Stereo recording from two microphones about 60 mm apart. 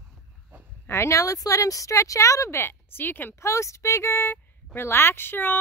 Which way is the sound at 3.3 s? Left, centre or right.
Left.